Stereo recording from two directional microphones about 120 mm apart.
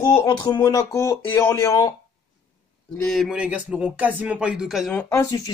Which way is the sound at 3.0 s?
Centre (ahead or behind).